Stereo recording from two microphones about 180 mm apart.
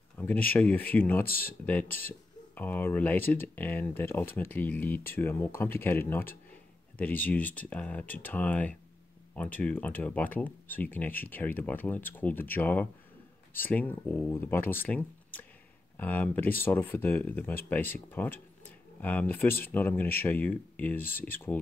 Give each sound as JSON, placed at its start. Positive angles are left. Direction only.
{"t": 0.2, "sound": "speech", "side_deg": 10}
{"t": 1.2, "sound": "speech", "side_deg": 55}
{"t": 1.7, "sound": "speech", "side_deg": 10}